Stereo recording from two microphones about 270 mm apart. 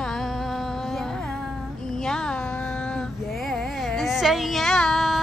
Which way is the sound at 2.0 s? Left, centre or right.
Centre.